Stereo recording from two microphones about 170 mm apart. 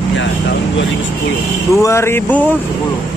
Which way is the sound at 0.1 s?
90° left.